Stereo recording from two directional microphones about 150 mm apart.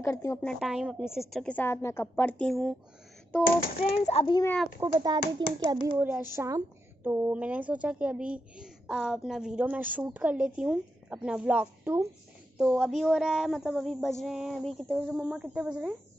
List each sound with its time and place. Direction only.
0.0 s a woman's voice: 20° left (ahead or behind)
0.4 s speech: 5° left (ahead or behind)
1.3 s a woman's voice: 5° left (ahead or behind)
3.8 s a child's voice: 40° left (ahead or behind)
4.7 s a child's voice: 30° right (ahead or behind)
5.9 s a woman's voice: 10° right (ahead or behind)